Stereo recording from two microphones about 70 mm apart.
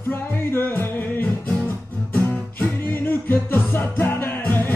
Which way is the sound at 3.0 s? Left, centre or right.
Left.